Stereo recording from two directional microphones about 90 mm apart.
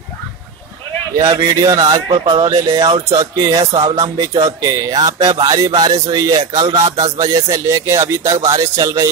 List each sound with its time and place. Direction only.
1.7 s speech: 50° right (ahead or behind)